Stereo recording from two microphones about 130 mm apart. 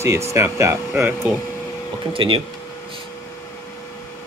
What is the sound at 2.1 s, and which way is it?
Speech, 40° right (ahead or behind).